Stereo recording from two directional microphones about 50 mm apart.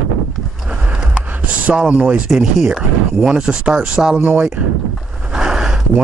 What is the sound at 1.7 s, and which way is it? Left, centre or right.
Speech, right.